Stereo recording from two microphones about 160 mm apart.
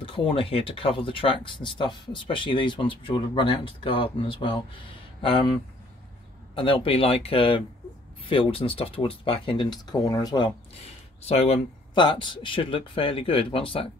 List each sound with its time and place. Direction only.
0.0 s speech: 35° left (ahead or behind)
6.5 s speech: 35° left (ahead or behind)
11.2 s speech: 40° left (ahead or behind)